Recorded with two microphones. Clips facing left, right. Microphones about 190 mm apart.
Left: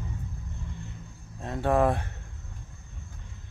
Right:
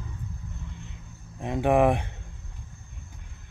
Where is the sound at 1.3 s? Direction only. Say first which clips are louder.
Right 3 dB; 15° right (ahead or behind).